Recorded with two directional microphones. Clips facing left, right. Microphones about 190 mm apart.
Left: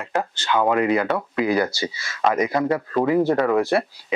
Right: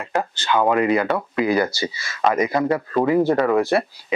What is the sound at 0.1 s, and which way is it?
Speech, 10° right (ahead or behind).